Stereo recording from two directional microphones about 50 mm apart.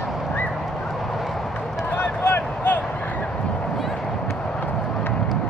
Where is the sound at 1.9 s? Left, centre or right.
Left.